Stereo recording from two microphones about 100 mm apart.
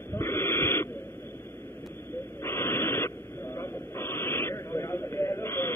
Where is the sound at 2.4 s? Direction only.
25° left (ahead or behind).